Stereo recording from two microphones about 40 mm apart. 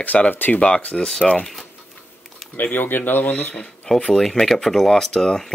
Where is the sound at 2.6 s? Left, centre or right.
Left.